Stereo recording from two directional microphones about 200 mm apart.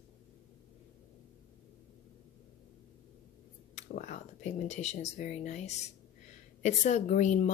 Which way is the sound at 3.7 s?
35° left (ahead or behind).